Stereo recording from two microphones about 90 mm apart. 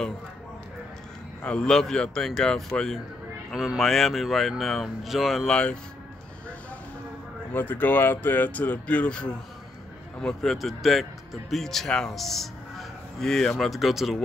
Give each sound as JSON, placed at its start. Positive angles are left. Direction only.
{"t": 1.4, "sound": "speech", "side_deg": 10}
{"t": 5.5, "sound": "speech", "side_deg": 15}
{"t": 7.5, "sound": "a man's voice", "side_deg": 20}